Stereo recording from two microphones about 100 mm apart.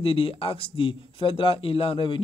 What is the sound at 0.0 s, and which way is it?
Speech, 65° left (ahead or behind).